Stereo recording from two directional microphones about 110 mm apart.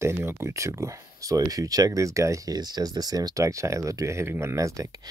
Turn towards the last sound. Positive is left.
turn(degrees=-30)  # may be behind; listen again after turning